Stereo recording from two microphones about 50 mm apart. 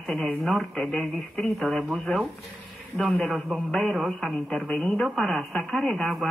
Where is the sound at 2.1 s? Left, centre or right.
Left.